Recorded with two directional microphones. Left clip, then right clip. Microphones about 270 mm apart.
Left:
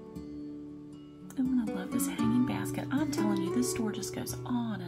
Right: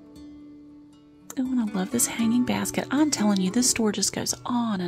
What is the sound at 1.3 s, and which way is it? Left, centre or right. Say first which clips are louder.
Speech: right 4 dB; right.